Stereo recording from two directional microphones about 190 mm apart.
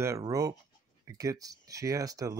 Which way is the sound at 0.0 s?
15° right (ahead or behind).